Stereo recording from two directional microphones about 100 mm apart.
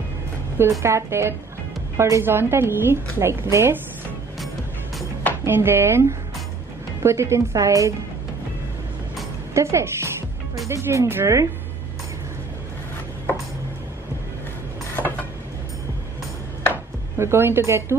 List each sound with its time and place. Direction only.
0.6 s a woman's voice: 30° right (ahead or behind)
5.4 s a woman's voice: 25° right (ahead or behind)
9.5 s a woman's voice: 30° right (ahead or behind)
17.2 s a woman's voice: 25° right (ahead or behind)